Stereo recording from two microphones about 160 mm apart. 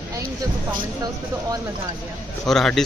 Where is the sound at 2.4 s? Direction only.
Centre (ahead or behind).